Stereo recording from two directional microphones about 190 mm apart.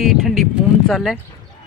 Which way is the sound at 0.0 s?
Centre (ahead or behind).